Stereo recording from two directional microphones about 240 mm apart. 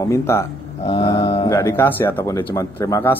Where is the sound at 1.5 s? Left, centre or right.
Centre.